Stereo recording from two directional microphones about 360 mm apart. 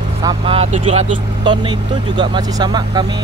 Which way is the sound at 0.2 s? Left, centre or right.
Centre.